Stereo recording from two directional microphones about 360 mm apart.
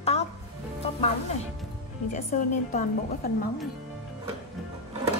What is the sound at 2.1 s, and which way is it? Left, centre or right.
A woman's voice, left.